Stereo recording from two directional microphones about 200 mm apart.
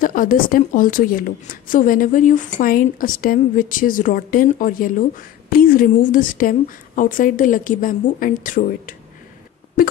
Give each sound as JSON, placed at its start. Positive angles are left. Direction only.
{"t": 0.0, "sound": "a woman's voice", "side_deg": 45}